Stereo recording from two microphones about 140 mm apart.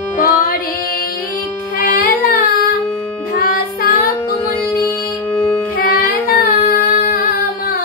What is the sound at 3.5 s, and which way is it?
Music, 90° left.